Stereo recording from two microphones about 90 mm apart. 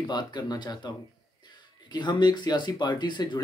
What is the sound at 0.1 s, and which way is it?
Speech, 55° left (ahead or behind).